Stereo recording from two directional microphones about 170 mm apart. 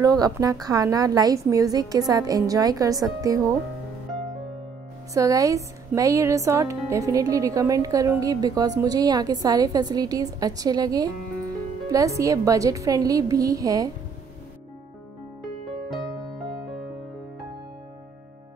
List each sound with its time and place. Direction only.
0.0 s speech: 20° right (ahead or behind)
5.1 s speech: 20° right (ahead or behind)